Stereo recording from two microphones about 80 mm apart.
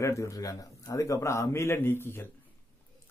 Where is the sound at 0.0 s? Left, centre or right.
Left.